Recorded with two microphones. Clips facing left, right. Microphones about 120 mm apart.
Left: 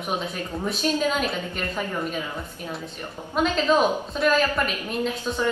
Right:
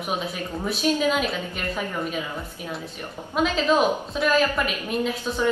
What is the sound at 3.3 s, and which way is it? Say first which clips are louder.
A woman's voice: even; centre (ahead or behind).